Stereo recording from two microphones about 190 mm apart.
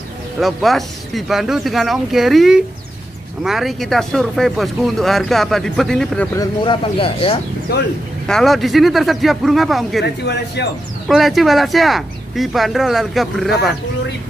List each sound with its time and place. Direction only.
0.4 s speech: centre (ahead or behind)
6.3 s speech: 20° left (ahead or behind)
8.3 s speech: centre (ahead or behind)
10.0 s speech: 65° left (ahead or behind)
11.1 s speech: centre (ahead or behind)